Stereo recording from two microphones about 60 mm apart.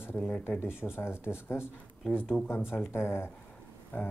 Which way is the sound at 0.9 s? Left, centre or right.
Left.